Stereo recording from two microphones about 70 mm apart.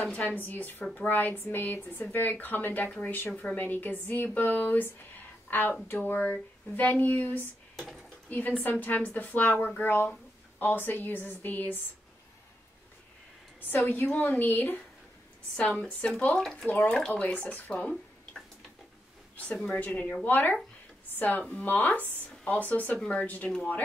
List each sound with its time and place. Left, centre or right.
0.2 s a woman's voice: left
3.3 s speech: centre
3.5 s a woman's voice: left
13.8 s a woman's voice: left
16.3 s speech: centre
16.6 s a woman's voice: left
17.6 s a sound: centre
19.5 s speech: centre
19.8 s a woman's voice: left